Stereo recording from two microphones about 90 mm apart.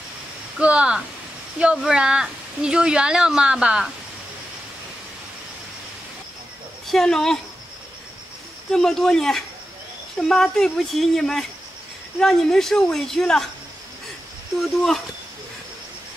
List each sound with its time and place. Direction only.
0.6 s a woman's voice: 10° right (ahead or behind)
6.9 s speech: 5° left (ahead or behind)
8.7 s speech: 5° left (ahead or behind)